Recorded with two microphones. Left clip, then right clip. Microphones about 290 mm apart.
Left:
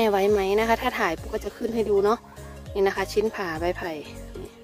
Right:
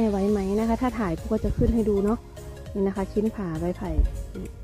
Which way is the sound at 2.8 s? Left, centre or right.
Centre.